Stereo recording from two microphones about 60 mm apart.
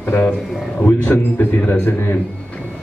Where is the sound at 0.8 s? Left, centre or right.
Left.